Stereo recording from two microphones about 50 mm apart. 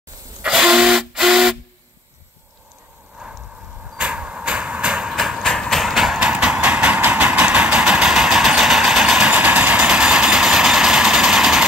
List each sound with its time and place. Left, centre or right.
0.4 s a sound: centre
3.2 s arrow: centre
5.4 s train: centre
6.1 s train: right
7.1 s vehicle: right
7.8 s vehicle: centre
9.3 s vehicle: right; by 11.6 s centre